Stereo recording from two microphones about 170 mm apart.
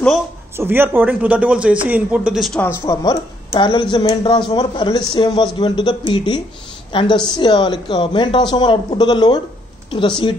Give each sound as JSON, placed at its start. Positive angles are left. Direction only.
{"t": 0.6, "sound": "speech", "side_deg": -15}
{"t": 2.6, "sound": "a woman's voice", "side_deg": 15}